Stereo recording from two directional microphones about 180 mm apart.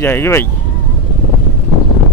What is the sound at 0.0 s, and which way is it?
Speech, 15° left (ahead or behind).